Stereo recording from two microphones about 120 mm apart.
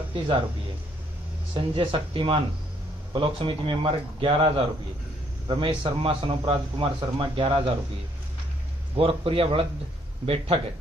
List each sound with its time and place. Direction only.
1.5 s speech: 45° right (ahead or behind)
8.9 s speech: 50° right (ahead or behind)